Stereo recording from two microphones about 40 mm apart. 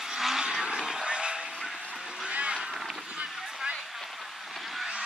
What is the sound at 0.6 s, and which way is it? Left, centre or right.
Vehicle, right.